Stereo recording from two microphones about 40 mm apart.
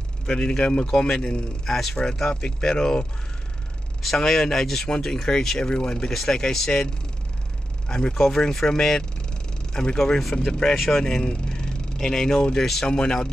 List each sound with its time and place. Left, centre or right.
0.3 s a man's voice: left
4.2 s speech: centre
8.1 s a man's voice: centre